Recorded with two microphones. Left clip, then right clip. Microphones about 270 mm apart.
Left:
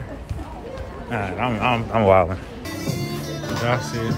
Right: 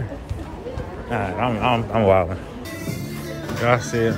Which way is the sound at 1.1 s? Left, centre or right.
Centre.